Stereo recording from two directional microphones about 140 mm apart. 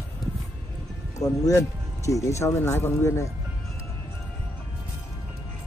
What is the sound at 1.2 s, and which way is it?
Speech, 25° left (ahead or behind).